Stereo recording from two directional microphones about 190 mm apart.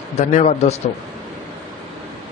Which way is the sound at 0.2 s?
35° left (ahead or behind).